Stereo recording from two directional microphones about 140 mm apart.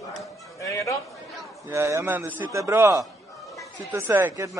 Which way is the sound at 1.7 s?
20° right (ahead or behind).